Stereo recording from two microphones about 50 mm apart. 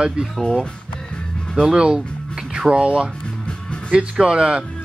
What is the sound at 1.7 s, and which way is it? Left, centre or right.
Speech, centre.